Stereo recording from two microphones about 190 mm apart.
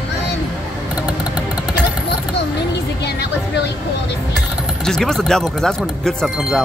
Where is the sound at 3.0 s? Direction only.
60° left (ahead or behind).